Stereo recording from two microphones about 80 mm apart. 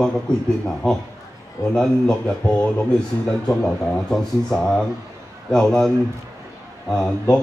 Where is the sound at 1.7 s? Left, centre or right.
Centre.